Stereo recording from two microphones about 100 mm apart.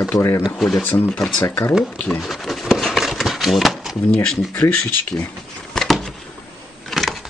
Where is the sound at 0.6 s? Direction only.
Centre (ahead or behind).